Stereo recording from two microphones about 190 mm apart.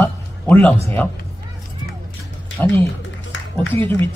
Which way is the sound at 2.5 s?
80° left.